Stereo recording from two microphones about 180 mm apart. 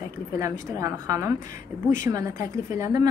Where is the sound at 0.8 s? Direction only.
20° right (ahead or behind).